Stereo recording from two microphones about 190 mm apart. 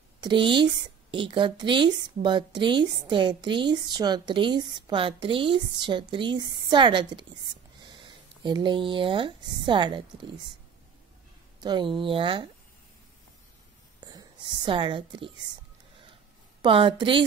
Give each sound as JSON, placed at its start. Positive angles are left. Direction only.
{"t": 0.2, "sound": "a woman's voice", "side_deg": -25}
{"t": 7.8, "sound": "a sound", "side_deg": -25}
{"t": 9.7, "sound": "a woman's voice", "side_deg": -25}
{"t": 11.6, "sound": "a woman's voice", "side_deg": -20}
{"t": 14.0, "sound": "a woman's voice", "side_deg": -25}
{"t": 16.6, "sound": "a woman's voice", "side_deg": -25}